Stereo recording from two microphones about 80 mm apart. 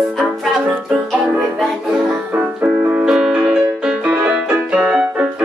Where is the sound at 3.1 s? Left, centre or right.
Centre.